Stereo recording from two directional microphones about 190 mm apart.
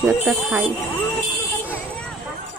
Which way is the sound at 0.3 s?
Centre (ahead or behind).